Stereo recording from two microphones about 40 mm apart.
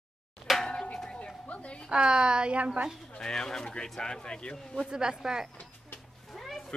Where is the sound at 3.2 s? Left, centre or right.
Centre.